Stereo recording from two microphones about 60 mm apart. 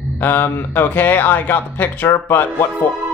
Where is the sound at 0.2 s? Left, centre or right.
Left.